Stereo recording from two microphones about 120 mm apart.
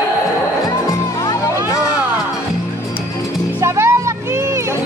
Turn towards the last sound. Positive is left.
turn(degrees=-20)  # may be behind; listen again after turning